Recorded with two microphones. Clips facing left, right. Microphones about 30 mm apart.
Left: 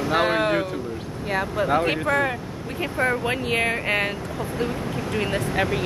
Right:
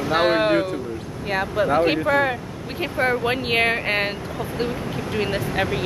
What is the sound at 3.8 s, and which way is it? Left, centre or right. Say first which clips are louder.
Speech: right 1 dB; right.